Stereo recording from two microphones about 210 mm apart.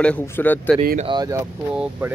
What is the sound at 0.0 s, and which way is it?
Speech, 10° left (ahead or behind).